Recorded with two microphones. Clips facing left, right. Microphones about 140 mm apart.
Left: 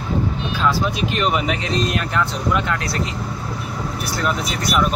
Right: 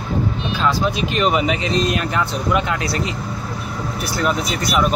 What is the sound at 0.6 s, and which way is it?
Speech, centre (ahead or behind).